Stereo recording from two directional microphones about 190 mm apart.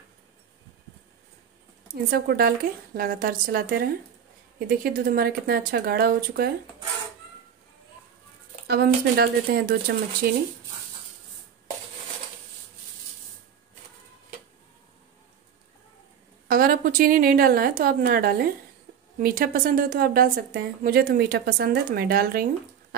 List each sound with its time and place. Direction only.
2.0 s a woman's voice: 55° right (ahead or behind)
8.6 s speech: 55° right (ahead or behind)
16.4 s a woman's voice: 50° right (ahead or behind)